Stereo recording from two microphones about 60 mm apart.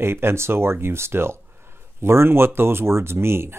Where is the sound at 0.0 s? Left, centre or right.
Right.